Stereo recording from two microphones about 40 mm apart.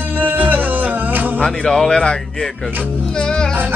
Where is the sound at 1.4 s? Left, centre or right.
Centre.